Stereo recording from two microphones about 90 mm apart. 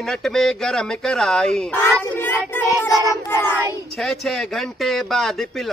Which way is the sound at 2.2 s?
25° left (ahead or behind).